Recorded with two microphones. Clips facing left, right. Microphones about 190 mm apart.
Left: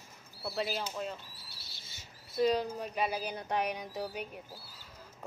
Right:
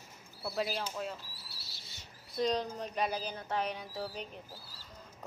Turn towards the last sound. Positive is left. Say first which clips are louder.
# left 2 dB
turn(degrees=15)  # may be behind; listen again after turning